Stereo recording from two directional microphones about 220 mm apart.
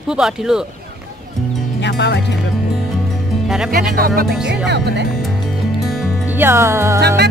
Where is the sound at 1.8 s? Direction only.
50° left (ahead or behind).